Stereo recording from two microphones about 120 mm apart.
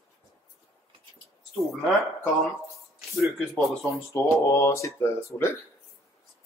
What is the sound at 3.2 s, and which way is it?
Speech, centre (ahead or behind).